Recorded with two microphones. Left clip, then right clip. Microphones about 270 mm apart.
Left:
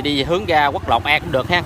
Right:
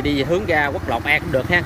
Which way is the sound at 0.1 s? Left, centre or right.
Centre.